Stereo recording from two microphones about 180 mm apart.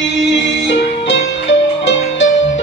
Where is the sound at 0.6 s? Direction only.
85° left.